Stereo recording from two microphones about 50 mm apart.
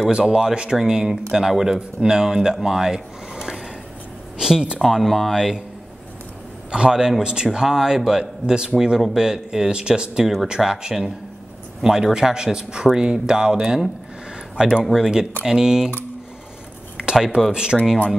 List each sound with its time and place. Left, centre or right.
0.2 s a man's voice: centre
4.8 s speech: centre
6.7 s a man's voice: centre
10.2 s speech: centre
10.5 s a man's voice: centre
16.9 s a sound: centre
17.5 s a man's voice: centre